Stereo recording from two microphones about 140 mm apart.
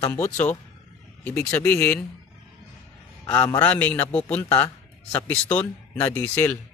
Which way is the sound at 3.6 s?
10° left (ahead or behind).